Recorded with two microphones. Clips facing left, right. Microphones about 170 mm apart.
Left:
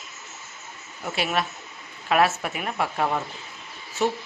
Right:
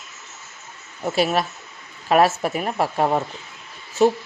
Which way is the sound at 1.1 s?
40° right (ahead or behind).